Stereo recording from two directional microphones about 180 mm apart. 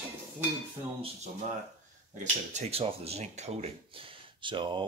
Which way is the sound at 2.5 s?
35° right (ahead or behind).